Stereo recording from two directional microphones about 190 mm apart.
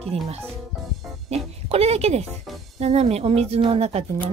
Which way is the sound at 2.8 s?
35° right (ahead or behind).